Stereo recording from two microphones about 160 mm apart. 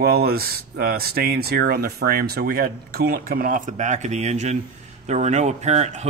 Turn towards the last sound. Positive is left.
turn(degrees=-45)  # may be behind; listen again after turning